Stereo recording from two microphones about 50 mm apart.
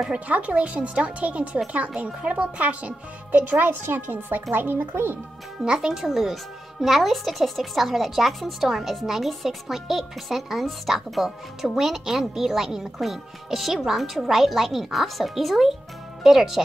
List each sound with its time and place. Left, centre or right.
0.1 s speech: right
3.3 s speech: right
5.6 s speech: centre